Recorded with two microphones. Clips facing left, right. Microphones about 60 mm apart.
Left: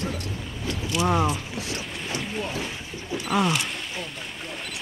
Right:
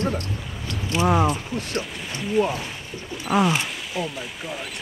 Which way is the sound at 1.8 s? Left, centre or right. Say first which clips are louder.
Right 1 dB; centre.